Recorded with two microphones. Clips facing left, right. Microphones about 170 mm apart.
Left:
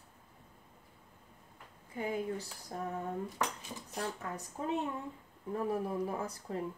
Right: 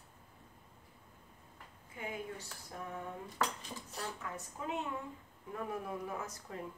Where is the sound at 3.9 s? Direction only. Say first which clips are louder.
Left 5 dB; 35° left (ahead or behind).